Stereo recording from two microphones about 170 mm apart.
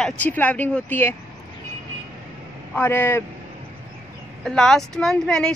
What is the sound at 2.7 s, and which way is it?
Speech, 10° left (ahead or behind).